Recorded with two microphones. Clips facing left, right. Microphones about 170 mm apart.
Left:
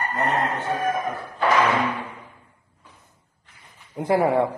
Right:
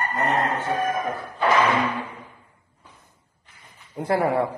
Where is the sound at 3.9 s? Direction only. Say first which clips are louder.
Left 2 dB; 15° left (ahead or behind).